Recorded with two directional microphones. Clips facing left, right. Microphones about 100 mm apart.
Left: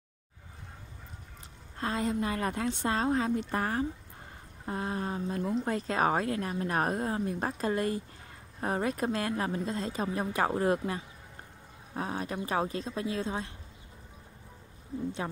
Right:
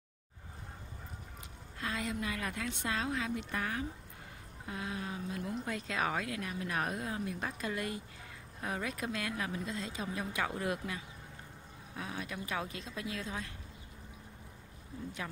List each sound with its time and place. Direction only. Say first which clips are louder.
1.8 s speech: left 7 dB; 35° left (ahead or behind)